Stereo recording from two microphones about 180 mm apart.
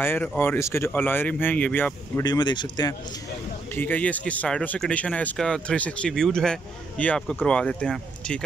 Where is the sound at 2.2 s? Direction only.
25° left (ahead or behind).